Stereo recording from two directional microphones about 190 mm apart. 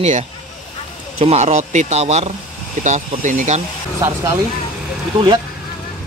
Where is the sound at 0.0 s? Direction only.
35° right (ahead or behind).